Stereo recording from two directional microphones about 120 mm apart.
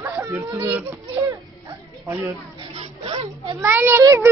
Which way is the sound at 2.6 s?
50° right (ahead or behind).